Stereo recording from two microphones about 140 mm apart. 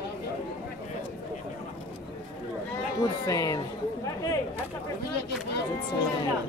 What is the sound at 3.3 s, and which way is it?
Speech, 25° left (ahead or behind).